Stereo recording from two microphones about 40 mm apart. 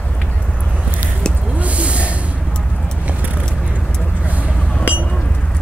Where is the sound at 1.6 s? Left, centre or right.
Right.